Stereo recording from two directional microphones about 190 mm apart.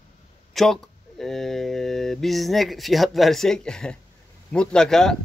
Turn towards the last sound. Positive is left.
turn(degrees=5)  # may be behind; listen again after turning